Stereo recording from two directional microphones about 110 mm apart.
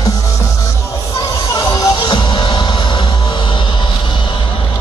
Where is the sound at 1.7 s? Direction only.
40° left (ahead or behind).